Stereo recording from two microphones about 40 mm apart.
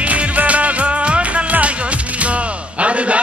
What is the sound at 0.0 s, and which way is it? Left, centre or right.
Music, right.